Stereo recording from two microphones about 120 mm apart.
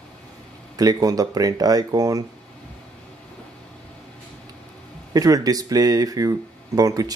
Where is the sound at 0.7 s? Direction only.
30° right (ahead or behind).